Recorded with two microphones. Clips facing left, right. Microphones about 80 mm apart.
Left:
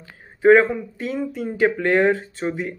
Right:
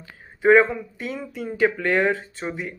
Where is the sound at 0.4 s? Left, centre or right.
Left.